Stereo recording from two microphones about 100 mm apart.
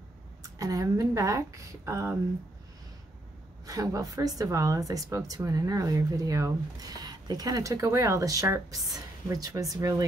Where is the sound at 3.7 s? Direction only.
35° right (ahead or behind).